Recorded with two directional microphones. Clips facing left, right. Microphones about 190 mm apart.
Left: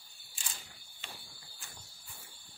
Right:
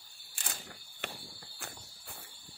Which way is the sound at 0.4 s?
60° right (ahead or behind).